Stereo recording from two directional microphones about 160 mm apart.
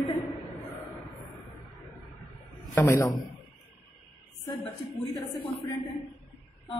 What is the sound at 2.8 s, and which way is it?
Speech, 20° left (ahead or behind).